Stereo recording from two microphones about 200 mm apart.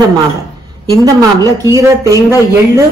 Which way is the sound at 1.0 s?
15° right (ahead or behind).